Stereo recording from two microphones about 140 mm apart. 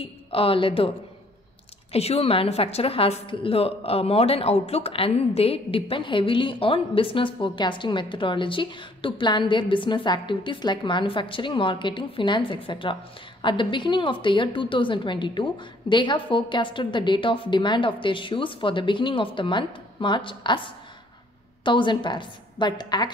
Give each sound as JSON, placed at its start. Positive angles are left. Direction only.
{"t": 0.0, "sound": "a woman's voice", "side_deg": 40}